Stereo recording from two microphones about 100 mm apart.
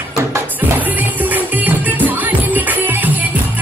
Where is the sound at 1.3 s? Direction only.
15° right (ahead or behind).